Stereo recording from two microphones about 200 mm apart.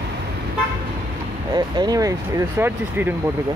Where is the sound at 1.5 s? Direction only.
20° right (ahead or behind).